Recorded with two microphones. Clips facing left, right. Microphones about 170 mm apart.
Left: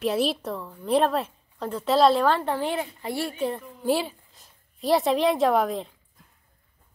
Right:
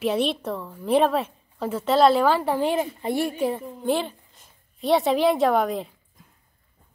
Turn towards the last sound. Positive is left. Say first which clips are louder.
# right 1 dB
turn(degrees=0)  # may be behind; listen again after turning